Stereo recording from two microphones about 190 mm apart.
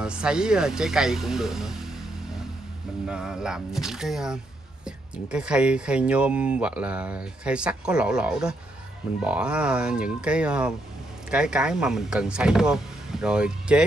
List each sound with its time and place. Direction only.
0.0 s speech: 5° right (ahead or behind)
3.1 s speech: 5° right (ahead or behind)